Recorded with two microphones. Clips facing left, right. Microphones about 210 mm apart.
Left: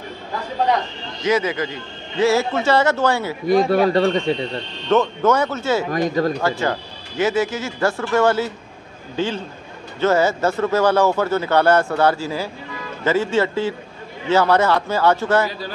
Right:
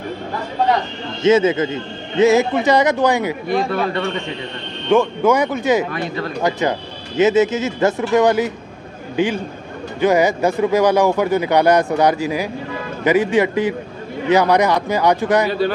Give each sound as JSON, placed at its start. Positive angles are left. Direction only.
{"t": 1.2, "sound": "speech", "side_deg": -25}
{"t": 3.4, "sound": "speech", "side_deg": 40}
{"t": 4.8, "sound": "speech", "side_deg": -10}
{"t": 5.9, "sound": "speech", "side_deg": 40}
{"t": 6.4, "sound": "speech", "side_deg": -20}